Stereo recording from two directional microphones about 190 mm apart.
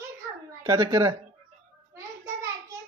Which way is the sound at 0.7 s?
20° right (ahead or behind).